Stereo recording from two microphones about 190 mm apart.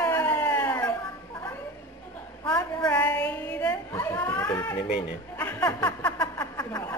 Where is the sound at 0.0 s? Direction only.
10° left (ahead or behind).